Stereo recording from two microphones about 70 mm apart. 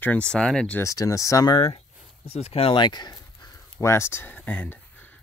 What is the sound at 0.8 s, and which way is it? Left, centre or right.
Speech, left.